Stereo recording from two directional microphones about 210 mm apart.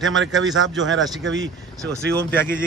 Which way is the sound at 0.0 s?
65° right (ahead or behind).